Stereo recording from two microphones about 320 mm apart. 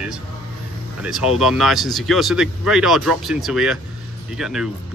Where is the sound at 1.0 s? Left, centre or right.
Centre.